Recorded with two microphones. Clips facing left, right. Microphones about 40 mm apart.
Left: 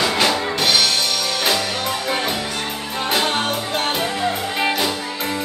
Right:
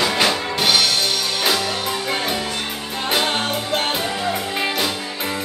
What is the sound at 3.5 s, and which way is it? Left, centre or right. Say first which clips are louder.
Music: even; centre.